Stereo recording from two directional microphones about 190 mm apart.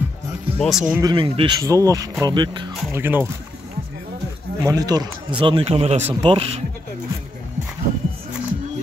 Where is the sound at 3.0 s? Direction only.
10° right (ahead or behind).